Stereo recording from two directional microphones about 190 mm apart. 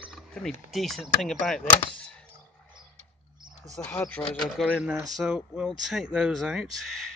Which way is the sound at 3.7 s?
10° left (ahead or behind).